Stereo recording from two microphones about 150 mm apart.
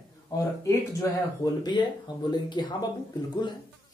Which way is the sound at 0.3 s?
20° left (ahead or behind).